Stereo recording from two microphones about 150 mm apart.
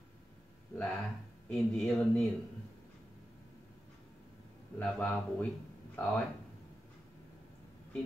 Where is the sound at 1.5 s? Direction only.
5° left (ahead or behind).